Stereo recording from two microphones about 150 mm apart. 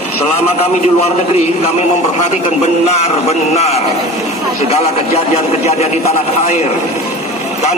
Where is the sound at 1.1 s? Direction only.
45° left (ahead or behind).